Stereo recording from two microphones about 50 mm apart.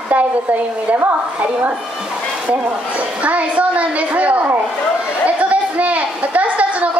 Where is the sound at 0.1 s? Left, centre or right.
Right.